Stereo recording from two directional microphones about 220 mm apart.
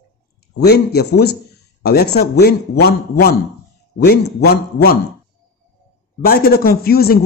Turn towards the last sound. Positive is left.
turn(degrees=45)  # may be behind; listen again after turning